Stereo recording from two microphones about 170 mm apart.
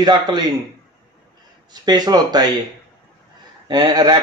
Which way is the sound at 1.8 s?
25° right (ahead or behind).